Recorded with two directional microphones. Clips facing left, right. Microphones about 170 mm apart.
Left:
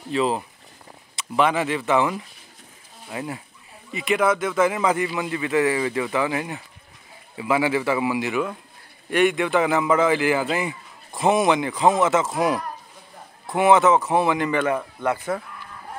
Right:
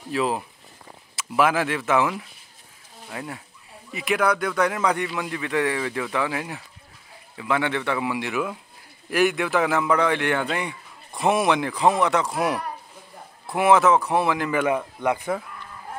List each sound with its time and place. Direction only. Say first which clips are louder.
0.1 s a man's voice: left 2 dB; centre (ahead or behind)
14.6 s speech: even; 10° right (ahead or behind)